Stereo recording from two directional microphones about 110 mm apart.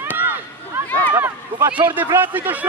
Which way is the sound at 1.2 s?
15° right (ahead or behind).